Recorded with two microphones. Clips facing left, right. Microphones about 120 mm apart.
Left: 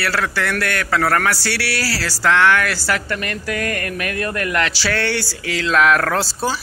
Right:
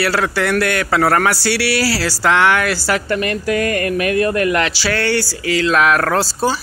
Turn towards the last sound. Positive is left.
turn(degrees=0)  # may be behind; listen again after turning